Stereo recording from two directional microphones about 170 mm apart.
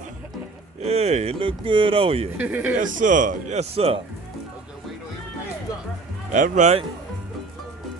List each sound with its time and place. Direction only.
0.7 s speech: 35° right (ahead or behind)
2.3 s speech: 10° right (ahead or behind)
2.7 s a man's voice: 50° right (ahead or behind)
6.3 s a man's voice: 45° right (ahead or behind)